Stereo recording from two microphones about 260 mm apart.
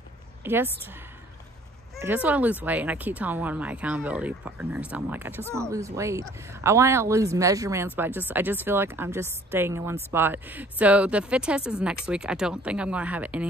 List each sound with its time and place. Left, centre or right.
0.4 s a woman's voice: centre
2.0 s speech: centre